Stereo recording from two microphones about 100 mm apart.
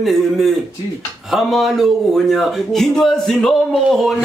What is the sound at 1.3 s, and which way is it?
Speech, centre (ahead or behind).